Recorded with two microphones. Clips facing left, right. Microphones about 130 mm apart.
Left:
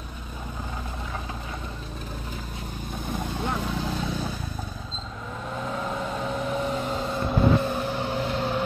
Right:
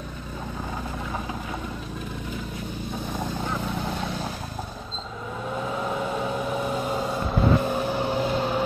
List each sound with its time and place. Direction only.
5.7 s vehicle: 5° right (ahead or behind)